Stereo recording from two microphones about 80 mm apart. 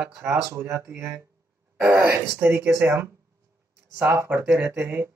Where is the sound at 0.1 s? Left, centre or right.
Right.